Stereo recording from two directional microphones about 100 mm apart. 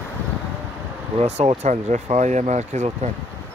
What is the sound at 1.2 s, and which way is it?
Speech, 90° right.